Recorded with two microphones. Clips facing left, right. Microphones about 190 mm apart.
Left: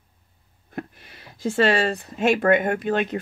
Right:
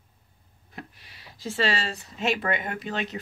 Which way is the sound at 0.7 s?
50° left (ahead or behind).